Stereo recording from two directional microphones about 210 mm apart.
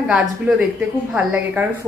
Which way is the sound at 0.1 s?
5° right (ahead or behind).